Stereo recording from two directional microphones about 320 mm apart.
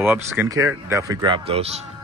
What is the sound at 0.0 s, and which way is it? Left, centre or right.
Speech, centre.